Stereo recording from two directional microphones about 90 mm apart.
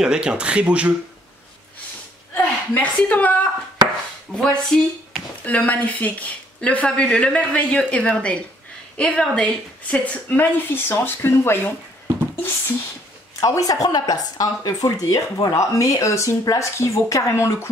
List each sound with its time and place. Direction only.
0.0 s speech: 10° right (ahead or behind)
2.3 s a woman's voice: 20° left (ahead or behind)
5.6 s a woman's voice: 15° left (ahead or behind)
13.4 s speech: 40° left (ahead or behind)